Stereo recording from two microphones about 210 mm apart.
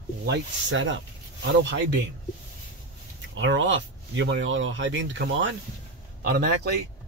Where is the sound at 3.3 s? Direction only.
60° right (ahead or behind).